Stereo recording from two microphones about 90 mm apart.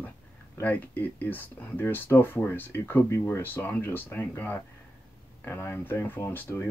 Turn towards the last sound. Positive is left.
turn(degrees=25)  # may be behind; listen again after turning